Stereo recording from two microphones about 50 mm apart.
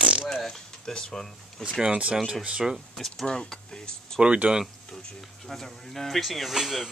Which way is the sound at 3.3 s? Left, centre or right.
Centre.